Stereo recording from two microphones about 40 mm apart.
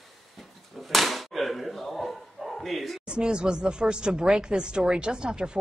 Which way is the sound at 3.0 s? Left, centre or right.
Right.